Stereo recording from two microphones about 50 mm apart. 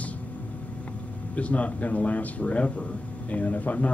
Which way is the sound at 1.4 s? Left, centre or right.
Left.